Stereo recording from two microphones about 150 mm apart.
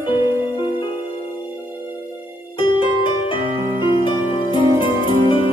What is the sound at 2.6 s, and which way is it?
Music, 35° left (ahead or behind).